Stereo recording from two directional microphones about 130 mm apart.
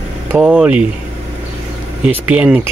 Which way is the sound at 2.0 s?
15° right (ahead or behind).